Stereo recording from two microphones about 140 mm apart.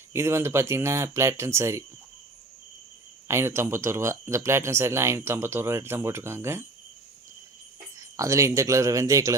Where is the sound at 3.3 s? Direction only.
20° right (ahead or behind).